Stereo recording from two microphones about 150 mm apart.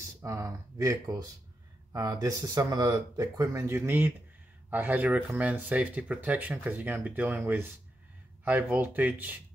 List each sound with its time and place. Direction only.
0.0 s speech: 20° right (ahead or behind)